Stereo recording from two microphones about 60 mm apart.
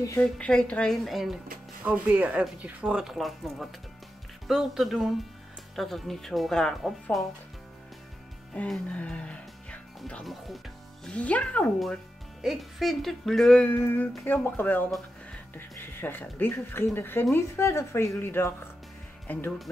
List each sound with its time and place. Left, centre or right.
0.2 s a woman's voice: centre
1.0 s speech: centre
1.9 s speech: right
3.0 s speech: centre
8.8 s music: left
11.1 s speech: left
12.4 s speech: centre
13.7 s speech: left
18.2 s speech: left